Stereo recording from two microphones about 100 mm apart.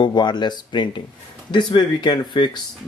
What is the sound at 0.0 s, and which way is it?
Speech, 50° left (ahead or behind).